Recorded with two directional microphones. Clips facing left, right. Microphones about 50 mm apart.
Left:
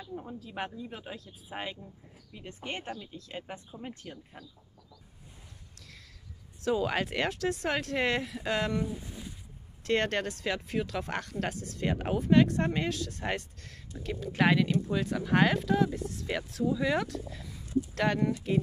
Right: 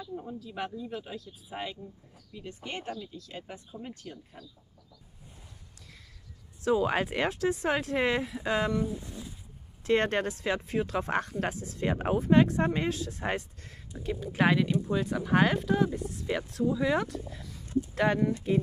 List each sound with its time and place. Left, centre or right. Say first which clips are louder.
0.0 s a sound: right 2 dB; left
0.4 s speech: even; left
0.7 s speech: right 3 dB; centre
6.6 s speech: right 3 dB; centre
9.8 s speech: right 2 dB; centre
13.6 s speech: right 1 dB; right